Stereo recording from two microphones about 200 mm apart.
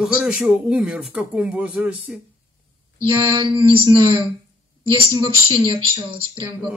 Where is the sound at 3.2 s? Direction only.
25° right (ahead or behind).